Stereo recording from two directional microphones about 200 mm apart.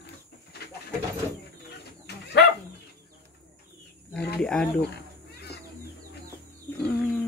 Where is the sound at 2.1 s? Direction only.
55° left (ahead or behind).